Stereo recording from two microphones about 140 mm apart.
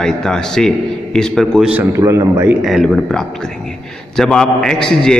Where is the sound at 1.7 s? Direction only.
20° right (ahead or behind).